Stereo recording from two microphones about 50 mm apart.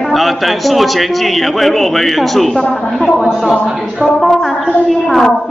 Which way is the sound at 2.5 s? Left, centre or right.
Centre.